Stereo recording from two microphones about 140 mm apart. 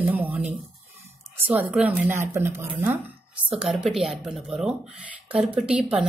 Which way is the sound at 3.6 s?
5° right (ahead or behind).